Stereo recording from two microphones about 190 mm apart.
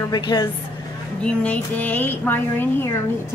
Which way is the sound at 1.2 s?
5° left (ahead or behind).